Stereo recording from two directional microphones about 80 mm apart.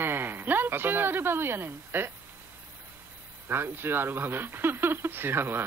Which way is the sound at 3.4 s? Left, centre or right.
Right.